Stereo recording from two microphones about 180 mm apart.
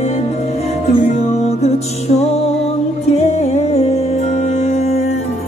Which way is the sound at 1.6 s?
35° left (ahead or behind).